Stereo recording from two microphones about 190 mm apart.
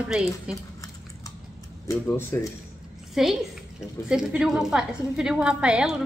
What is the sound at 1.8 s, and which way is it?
Speech, 15° left (ahead or behind).